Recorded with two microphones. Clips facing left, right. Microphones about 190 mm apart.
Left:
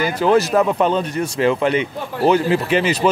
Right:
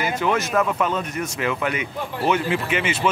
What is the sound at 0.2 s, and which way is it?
Speech, 35° left (ahead or behind).